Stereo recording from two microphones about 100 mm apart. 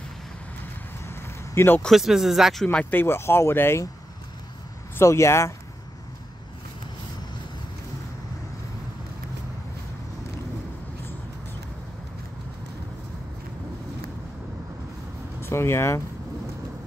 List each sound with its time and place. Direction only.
1.0 s a sound: 25° left (ahead or behind)
1.8 s speech: centre (ahead or behind)
2.8 s speech: 20° left (ahead or behind)
4.9 s speech: 30° left (ahead or behind)
15.4 s speech: 25° left (ahead or behind)